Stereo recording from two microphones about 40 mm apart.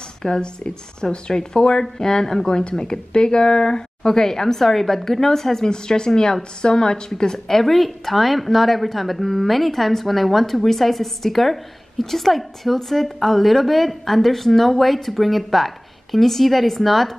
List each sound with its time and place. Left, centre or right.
0.2 s a woman's voice: left; by 17.1 s centre